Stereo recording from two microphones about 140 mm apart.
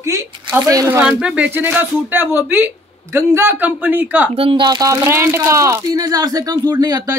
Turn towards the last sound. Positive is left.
turn(degrees=-25)  # may be behind; listen again after turning